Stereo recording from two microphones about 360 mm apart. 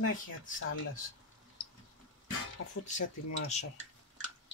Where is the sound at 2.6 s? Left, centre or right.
Left.